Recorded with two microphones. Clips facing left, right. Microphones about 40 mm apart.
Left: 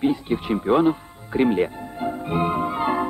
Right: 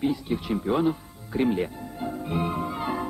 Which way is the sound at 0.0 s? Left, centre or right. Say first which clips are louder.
Left 4 dB; left.